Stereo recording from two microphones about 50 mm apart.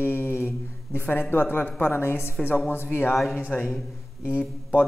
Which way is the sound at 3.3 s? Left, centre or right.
Left.